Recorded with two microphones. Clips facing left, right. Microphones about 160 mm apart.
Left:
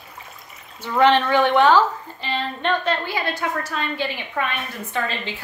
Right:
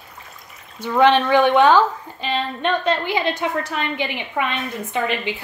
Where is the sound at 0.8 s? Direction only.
15° right (ahead or behind).